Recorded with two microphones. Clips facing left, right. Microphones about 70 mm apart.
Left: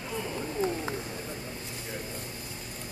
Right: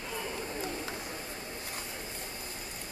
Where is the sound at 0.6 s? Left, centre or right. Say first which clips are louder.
Left 11 dB; left.